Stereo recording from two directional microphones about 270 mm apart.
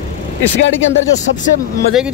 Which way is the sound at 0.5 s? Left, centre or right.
Left.